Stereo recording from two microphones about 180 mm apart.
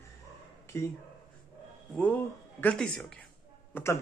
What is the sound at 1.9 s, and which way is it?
A man's voice, 10° left (ahead or behind).